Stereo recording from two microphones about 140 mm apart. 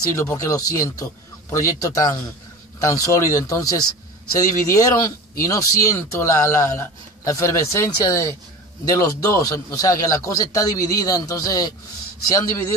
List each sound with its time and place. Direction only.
0.2 s speech: 20° left (ahead or behind)